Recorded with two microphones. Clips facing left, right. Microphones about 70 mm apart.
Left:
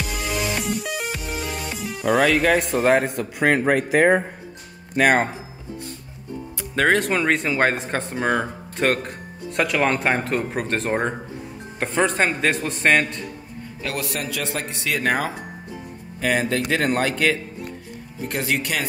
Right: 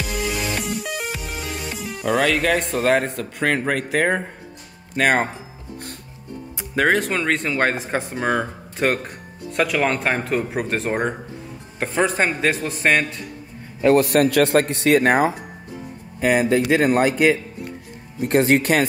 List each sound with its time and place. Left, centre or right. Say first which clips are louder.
0.0 s music: right 1 dB; centre
4.9 s speech: left 1 dB; centre
6.7 s speech: even; centre
13.9 s a man's voice: right 11 dB; right
16.2 s speech: right 4 dB; centre
18.3 s speech: right 8 dB; right